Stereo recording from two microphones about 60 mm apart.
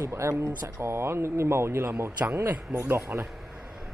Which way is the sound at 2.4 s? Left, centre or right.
Right.